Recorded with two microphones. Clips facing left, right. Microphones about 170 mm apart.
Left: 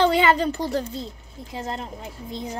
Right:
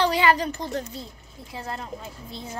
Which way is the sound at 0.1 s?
25° left (ahead or behind).